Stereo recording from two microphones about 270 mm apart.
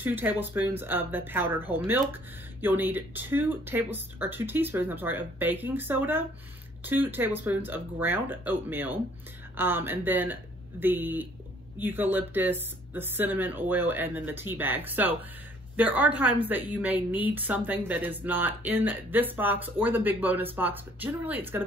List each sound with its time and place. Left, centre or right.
0.0 s speech: centre